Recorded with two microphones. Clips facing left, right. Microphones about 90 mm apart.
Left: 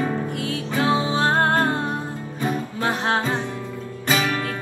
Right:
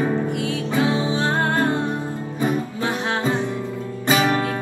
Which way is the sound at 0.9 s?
40° left (ahead or behind).